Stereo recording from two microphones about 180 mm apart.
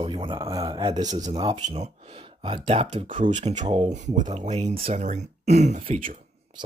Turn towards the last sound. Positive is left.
turn(degrees=-30)  # may be behind; listen again after turning